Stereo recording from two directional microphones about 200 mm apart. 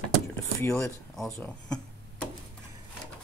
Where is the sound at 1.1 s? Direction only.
5° left (ahead or behind).